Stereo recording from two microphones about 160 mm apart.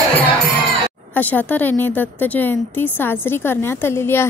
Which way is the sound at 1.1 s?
10° left (ahead or behind).